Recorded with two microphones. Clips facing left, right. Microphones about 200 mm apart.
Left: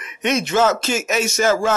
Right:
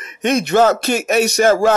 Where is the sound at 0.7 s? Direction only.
60° right (ahead or behind).